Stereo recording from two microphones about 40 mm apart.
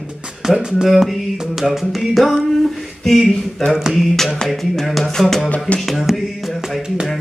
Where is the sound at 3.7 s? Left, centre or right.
Centre.